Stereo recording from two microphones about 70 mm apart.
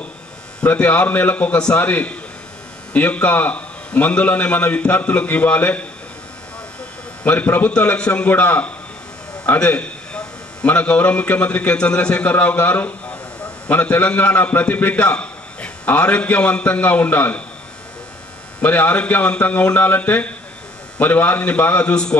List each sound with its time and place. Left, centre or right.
0.6 s a man's voice: left
7.2 s a man's voice: left
18.6 s a man's voice: left